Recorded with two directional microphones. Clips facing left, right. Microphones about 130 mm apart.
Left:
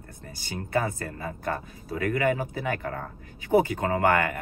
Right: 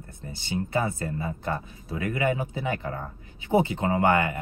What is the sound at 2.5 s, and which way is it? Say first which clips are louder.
Speech: even; 20° right (ahead or behind).